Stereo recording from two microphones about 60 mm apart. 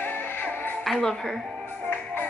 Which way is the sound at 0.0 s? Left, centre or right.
Left.